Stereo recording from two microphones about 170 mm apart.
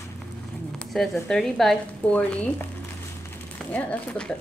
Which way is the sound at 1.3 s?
Centre (ahead or behind).